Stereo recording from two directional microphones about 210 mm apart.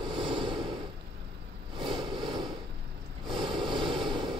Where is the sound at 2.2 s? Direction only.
Centre (ahead or behind).